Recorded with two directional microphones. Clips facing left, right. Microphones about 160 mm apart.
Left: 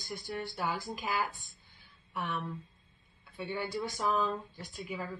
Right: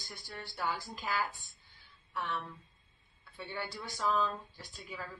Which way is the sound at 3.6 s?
15° left (ahead or behind).